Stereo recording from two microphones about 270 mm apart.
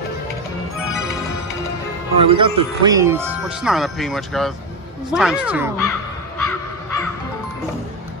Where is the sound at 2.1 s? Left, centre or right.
Right; by 5.7 s centre.